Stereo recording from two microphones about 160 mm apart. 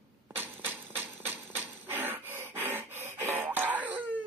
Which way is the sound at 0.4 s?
10° right (ahead or behind).